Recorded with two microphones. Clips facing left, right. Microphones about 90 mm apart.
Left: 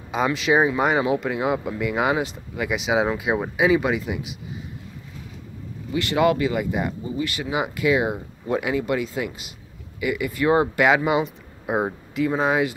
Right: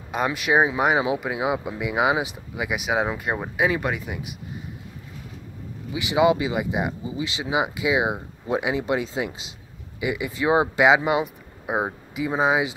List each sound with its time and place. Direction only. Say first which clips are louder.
0.1 s speech: left 2 dB; 5° right (ahead or behind)
5.9 s speech: even; 15° right (ahead or behind)
11.6 s speech: left 2 dB; 5° right (ahead or behind)